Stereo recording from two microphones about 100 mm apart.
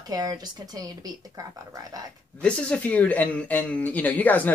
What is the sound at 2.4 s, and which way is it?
Speech, 15° left (ahead or behind).